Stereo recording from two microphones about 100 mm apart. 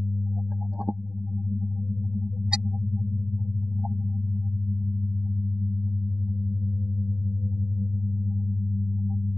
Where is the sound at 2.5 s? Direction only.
10° right (ahead or behind).